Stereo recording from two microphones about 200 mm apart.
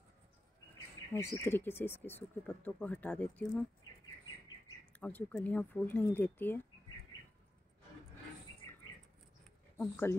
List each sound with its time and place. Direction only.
1.1 s speech: 15° left (ahead or behind)
5.0 s speech: 5° left (ahead or behind)
9.8 s speech: 10° left (ahead or behind)